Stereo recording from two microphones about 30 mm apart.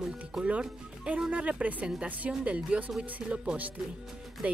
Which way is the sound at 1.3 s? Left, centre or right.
Right.